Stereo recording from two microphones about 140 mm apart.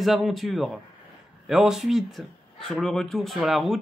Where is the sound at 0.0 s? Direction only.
Centre (ahead or behind).